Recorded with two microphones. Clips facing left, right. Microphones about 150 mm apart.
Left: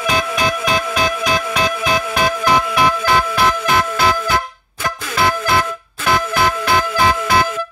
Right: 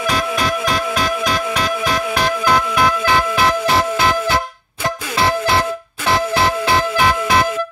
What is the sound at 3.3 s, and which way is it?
Music, 20° right (ahead or behind).